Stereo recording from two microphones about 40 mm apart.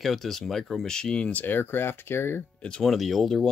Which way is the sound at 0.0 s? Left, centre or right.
Centre.